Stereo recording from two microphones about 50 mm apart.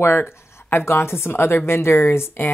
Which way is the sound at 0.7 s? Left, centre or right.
Left.